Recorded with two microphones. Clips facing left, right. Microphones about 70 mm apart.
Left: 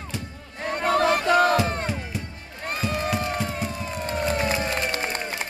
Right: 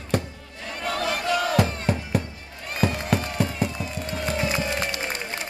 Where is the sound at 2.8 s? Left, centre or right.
Right.